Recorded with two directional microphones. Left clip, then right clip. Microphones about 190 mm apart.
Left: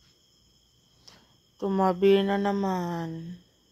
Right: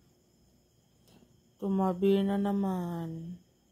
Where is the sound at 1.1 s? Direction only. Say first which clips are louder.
Left 9 dB; 40° left (ahead or behind).